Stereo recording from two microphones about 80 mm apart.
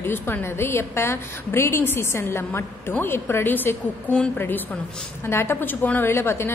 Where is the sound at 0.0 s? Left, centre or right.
Left.